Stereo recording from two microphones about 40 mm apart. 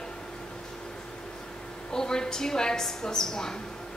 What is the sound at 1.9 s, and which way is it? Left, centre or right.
A woman's voice, centre.